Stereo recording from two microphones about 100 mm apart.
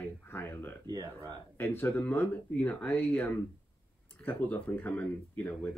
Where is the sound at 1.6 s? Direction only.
25° left (ahead or behind).